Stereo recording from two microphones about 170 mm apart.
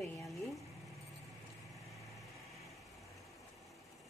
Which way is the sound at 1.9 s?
Centre (ahead or behind).